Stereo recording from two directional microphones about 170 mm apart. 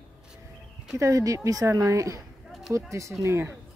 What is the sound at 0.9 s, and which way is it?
A woman's voice, 20° right (ahead or behind).